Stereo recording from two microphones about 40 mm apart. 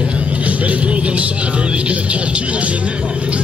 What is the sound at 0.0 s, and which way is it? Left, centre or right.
Speech, right.